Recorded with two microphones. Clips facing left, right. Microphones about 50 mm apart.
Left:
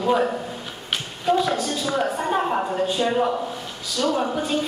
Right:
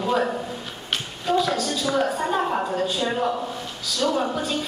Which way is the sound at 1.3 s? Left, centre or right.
Left.